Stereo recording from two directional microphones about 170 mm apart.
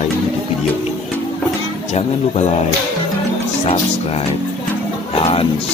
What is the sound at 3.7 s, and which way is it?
Speech, 35° left (ahead or behind).